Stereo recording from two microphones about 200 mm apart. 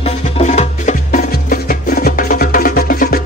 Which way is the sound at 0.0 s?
35° left (ahead or behind).